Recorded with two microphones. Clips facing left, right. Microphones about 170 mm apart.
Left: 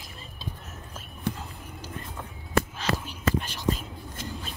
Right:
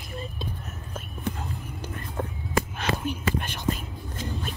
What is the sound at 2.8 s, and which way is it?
Whispering, 55° right (ahead or behind).